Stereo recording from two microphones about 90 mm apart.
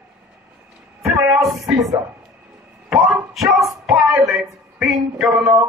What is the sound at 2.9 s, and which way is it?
A woman's voice, 5° right (ahead or behind).